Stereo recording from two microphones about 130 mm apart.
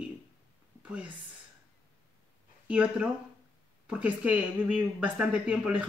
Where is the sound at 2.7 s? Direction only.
10° right (ahead or behind).